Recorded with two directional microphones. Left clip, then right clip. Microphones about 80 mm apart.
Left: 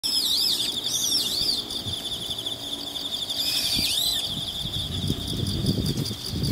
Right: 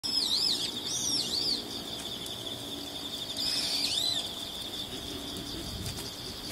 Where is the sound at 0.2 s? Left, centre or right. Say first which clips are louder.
Left 4 dB; centre.